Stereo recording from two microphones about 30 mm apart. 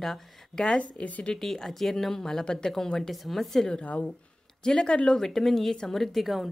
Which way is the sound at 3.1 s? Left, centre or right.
Centre.